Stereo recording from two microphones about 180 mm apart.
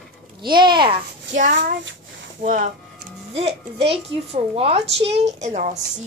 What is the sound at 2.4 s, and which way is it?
Speech, 45° right (ahead or behind).